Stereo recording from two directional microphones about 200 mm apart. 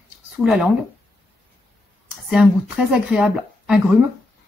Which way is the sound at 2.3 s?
5° right (ahead or behind).